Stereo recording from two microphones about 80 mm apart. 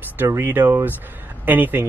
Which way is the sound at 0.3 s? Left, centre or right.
Right.